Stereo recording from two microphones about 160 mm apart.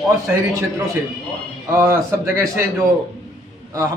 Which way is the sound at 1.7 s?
15° right (ahead or behind).